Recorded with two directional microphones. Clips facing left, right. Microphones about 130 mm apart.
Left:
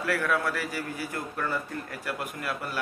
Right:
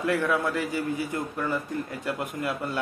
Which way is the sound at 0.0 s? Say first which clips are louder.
Right 2 dB; 20° right (ahead or behind).